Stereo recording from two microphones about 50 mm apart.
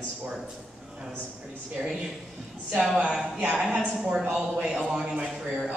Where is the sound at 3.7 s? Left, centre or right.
Centre.